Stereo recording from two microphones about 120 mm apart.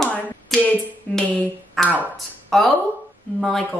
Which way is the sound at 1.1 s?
5° left (ahead or behind).